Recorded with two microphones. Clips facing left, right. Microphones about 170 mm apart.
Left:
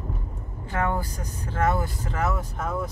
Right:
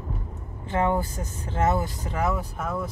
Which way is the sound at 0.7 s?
20° right (ahead or behind).